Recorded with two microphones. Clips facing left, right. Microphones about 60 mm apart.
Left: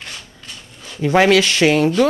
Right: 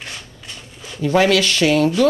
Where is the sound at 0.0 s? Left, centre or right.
Centre.